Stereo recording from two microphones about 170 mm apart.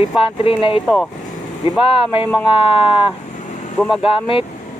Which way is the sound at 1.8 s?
30° left (ahead or behind).